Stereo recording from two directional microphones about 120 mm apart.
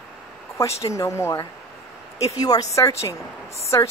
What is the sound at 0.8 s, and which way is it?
A woman's voice, 25° left (ahead or behind).